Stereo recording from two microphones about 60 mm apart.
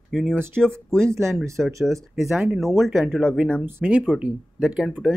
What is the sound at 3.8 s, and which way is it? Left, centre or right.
Speech, right.